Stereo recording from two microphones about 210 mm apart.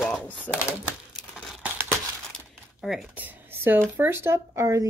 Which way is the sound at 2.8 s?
5° right (ahead or behind).